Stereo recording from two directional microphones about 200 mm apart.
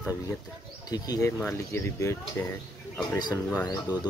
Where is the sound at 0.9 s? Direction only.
20° left (ahead or behind).